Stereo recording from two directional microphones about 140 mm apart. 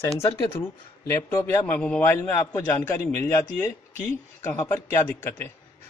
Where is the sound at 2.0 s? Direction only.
20° left (ahead or behind).